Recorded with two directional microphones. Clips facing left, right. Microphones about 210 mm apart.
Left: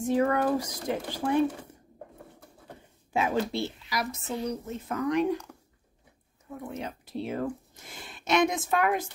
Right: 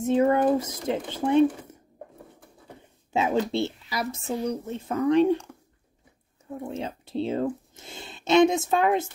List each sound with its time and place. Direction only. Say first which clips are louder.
0.0 s a woman's voice: right 4 dB; 25° right (ahead or behind)
3.1 s a woman's voice: right 3 dB; 25° right (ahead or behind)
6.6 s a woman's voice: right 4 dB; 25° right (ahead or behind)